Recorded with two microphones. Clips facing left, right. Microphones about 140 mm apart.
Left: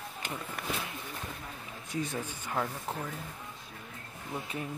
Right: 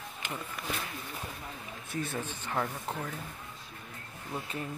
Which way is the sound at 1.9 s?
15° left (ahead or behind).